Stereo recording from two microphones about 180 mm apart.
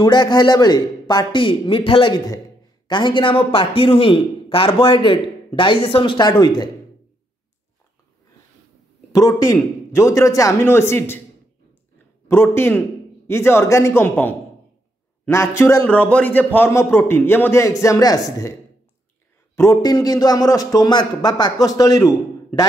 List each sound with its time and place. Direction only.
0.0 s a man's voice: 25° left (ahead or behind)
9.1 s a man's voice: 20° left (ahead or behind)
12.3 s a man's voice: 15° left (ahead or behind)
19.5 s a man's voice: 15° left (ahead or behind)